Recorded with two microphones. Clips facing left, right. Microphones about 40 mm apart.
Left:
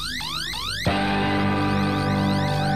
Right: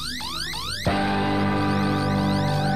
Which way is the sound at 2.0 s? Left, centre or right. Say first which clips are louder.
Even; left.